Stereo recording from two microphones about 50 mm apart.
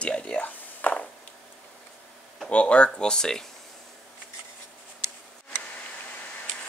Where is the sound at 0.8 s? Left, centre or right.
Left.